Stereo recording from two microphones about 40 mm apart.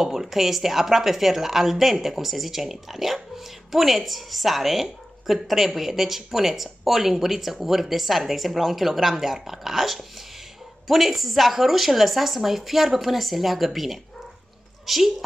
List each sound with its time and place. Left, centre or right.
0.0 s a woman's voice: centre